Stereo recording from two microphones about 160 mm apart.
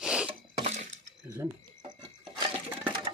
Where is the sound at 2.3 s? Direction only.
35° right (ahead or behind).